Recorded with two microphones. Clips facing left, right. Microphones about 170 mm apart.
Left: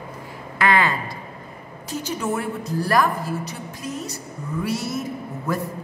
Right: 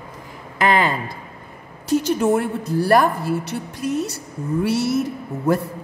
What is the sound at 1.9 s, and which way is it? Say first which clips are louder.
A woman's voice: right 8 dB; 60° right (ahead or behind).